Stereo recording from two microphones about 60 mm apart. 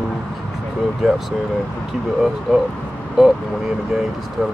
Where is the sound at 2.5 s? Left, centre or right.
Centre.